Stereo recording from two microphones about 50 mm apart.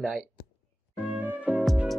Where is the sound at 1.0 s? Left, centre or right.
Right.